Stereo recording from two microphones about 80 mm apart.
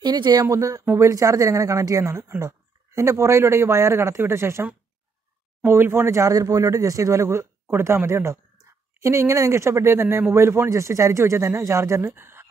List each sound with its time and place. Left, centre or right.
0.0 s a woman's voice: right